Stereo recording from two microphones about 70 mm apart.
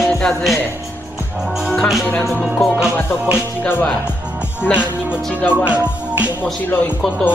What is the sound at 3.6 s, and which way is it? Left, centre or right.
Speech, left.